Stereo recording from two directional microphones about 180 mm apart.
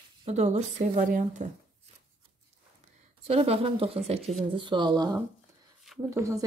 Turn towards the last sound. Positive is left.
turn(degrees=-15)  # may be behind; listen again after turning